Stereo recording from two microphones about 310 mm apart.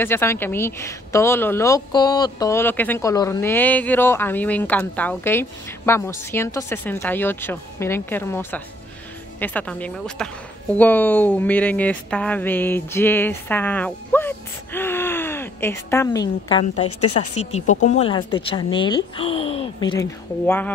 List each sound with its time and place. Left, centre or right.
0.0 s speech: centre